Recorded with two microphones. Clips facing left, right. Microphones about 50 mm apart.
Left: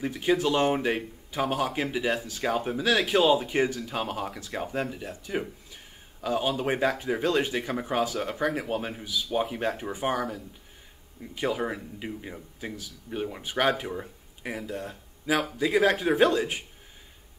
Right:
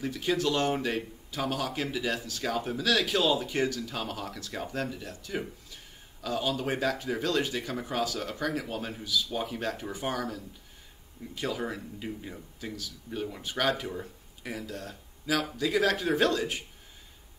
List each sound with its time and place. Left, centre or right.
0.0 s speech: centre